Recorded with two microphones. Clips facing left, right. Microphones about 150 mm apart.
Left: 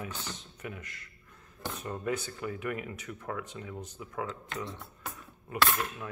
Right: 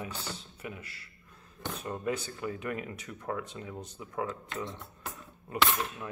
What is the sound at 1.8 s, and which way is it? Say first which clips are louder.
Speech: even; 20° right (ahead or behind).